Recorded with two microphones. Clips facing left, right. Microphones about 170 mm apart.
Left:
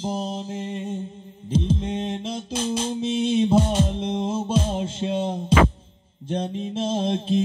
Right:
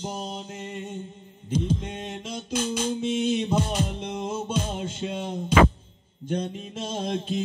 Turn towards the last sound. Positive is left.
turn(degrees=25)  # may be behind; listen again after turning